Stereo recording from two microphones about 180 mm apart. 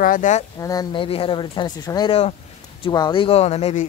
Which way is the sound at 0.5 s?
20° left (ahead or behind).